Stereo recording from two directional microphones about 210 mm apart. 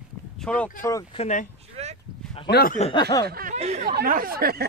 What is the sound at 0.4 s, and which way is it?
Speech, 5° left (ahead or behind).